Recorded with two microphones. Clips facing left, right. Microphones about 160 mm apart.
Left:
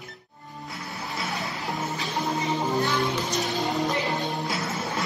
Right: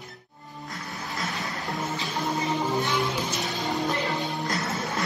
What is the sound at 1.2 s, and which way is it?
Music, centre (ahead or behind).